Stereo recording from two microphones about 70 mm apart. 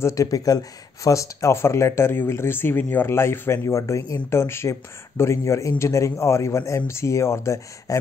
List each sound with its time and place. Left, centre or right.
0.0 s speech: left